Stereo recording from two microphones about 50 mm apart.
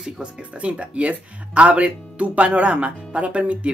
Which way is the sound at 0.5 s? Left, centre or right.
Right.